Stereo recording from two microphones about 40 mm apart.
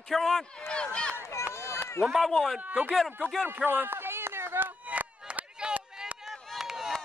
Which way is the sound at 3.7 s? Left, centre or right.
Right.